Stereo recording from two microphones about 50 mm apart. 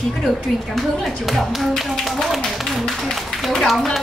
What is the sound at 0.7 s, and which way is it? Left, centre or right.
Speech, centre.